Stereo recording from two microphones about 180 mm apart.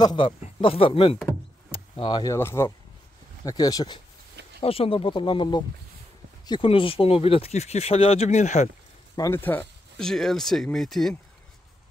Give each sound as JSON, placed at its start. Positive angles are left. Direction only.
{"t": 0.0, "sound": "speech", "side_deg": 25}
{"t": 9.1, "sound": "speech", "side_deg": 15}